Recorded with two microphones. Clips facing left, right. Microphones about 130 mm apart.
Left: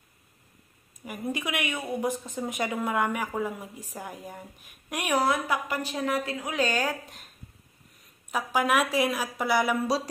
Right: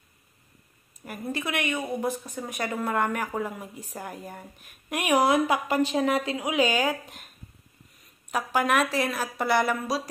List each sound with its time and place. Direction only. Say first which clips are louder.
1.0 s a woman's voice: even; 10° left (ahead or behind); by 7.2 s 5° right (ahead or behind)
8.3 s a woman's voice: right 1 dB; centre (ahead or behind)